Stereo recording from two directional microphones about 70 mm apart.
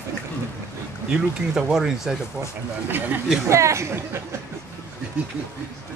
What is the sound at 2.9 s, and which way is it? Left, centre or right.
Speech, right.